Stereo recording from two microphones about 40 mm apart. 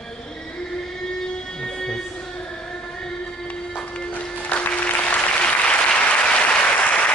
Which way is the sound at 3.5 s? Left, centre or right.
Left.